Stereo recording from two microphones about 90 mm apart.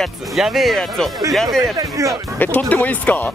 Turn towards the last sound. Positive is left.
turn(degrees=20)  # may be behind; listen again after turning